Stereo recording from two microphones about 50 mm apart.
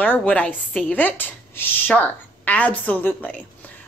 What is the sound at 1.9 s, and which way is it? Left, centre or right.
Speech, left.